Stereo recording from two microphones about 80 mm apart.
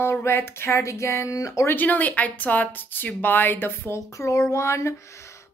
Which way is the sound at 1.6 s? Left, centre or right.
Left.